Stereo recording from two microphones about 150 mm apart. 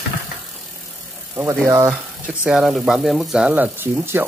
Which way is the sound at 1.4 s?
15° right (ahead or behind).